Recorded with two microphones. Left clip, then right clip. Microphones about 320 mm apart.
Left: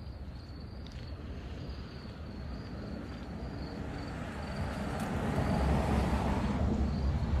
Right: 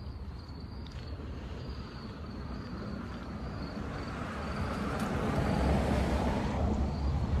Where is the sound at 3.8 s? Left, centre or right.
Centre.